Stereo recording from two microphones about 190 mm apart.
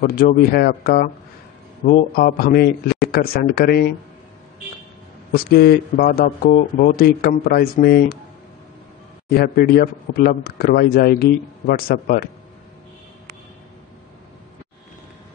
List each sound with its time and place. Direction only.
0.0 s speech: 45° left (ahead or behind)
5.3 s speech: 50° left (ahead or behind)
9.3 s speech: 55° left (ahead or behind)